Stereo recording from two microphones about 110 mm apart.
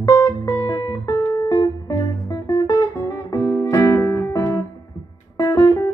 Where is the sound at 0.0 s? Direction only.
35° left (ahead or behind).